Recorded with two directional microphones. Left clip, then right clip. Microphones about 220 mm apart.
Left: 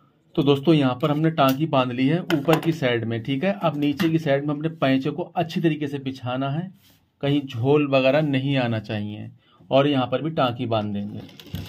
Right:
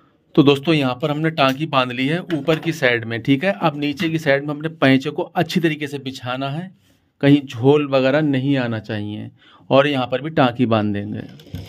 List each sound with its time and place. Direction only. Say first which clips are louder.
0.3 s a man's voice: right 4 dB; 50° right (ahead or behind); by 9.2 s 30° right (ahead or behind)
9.7 s speech: right 4 dB; 50° right (ahead or behind)